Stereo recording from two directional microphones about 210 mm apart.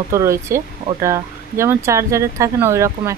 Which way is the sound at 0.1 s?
15° right (ahead or behind).